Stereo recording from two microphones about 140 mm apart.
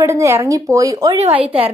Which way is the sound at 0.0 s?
20° right (ahead or behind).